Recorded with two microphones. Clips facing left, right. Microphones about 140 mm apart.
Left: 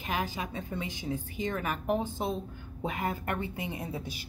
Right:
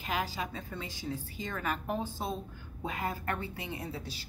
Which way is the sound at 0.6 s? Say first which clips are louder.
Left 5 dB; 20° left (ahead or behind).